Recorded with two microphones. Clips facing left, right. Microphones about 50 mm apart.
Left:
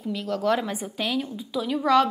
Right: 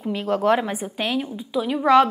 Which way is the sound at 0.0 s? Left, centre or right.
Right.